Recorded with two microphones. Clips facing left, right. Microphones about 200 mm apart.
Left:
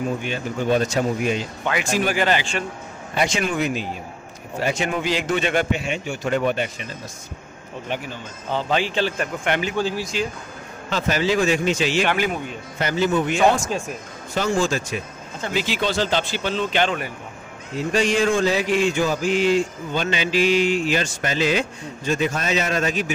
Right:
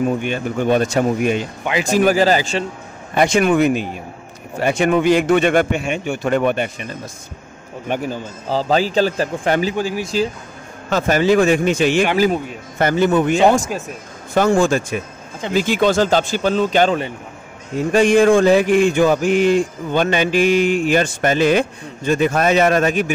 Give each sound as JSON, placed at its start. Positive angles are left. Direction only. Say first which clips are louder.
{"t": 0.2, "sound": "a man's voice", "louder": "right 5 dB", "side_deg": -55}
{"t": 1.8, "sound": "a man's voice", "louder": "right 8 dB", "side_deg": -40}
{"t": 3.2, "sound": "a man's voice", "louder": "right 8 dB", "side_deg": -55}
{"t": 7.9, "sound": "a man's voice", "louder": "right 8 dB", "side_deg": -40}
{"t": 9.8, "sound": "speech", "louder": "right 2 dB", "side_deg": -15}
{"t": 10.9, "sound": "mantra", "louder": "right 6 dB", "side_deg": -50}
{"t": 13.7, "sound": "speech", "louder": "right 1 dB", "side_deg": 0}
{"t": 14.3, "sound": "mantra", "louder": "right 7 dB", "side_deg": -55}
{"t": 17.7, "sound": "mantra", "louder": "right 7 dB", "side_deg": -55}